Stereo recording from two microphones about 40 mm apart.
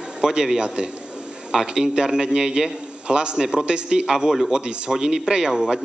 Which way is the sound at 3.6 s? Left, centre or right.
Right.